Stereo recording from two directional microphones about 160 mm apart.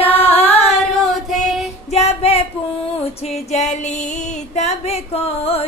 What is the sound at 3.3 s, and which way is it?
Music, 45° left (ahead or behind).